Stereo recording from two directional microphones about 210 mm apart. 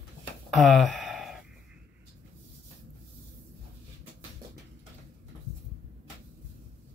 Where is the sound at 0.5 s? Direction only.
Centre (ahead or behind).